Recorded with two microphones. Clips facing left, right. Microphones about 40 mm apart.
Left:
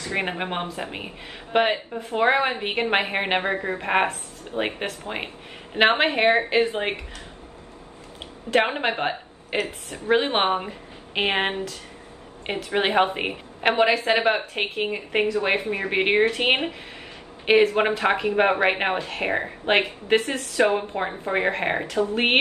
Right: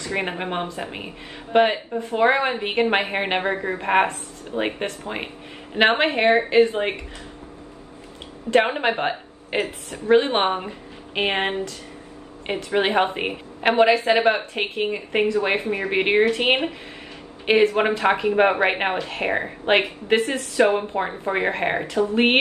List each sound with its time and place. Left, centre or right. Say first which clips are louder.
0.2 s a woman's voice: even; centre
8.5 s speech: right 3 dB; centre
10.0 s a woman's voice: right 3 dB; centre
12.4 s a woman's voice: right 2 dB; centre
15.6 s a woman's voice: right 2 dB; right
16.1 s speech: right 2 dB; centre